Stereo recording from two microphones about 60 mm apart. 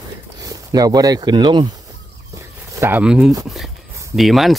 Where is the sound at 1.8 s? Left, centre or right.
Right.